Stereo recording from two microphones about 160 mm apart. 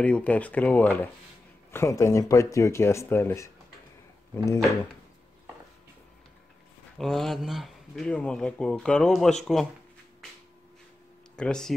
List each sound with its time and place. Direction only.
0.0 s speech: 10° left (ahead or behind)
7.0 s speech: centre (ahead or behind)
11.3 s speech: 5° left (ahead or behind)